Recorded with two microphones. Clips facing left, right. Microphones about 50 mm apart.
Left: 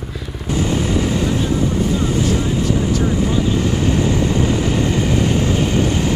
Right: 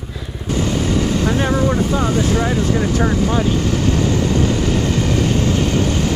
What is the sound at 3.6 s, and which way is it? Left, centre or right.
Vehicle, centre.